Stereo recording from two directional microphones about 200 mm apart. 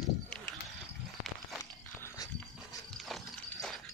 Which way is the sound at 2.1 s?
20° left (ahead or behind).